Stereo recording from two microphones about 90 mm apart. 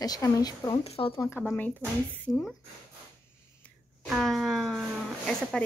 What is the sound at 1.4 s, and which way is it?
Speech, 20° left (ahead or behind).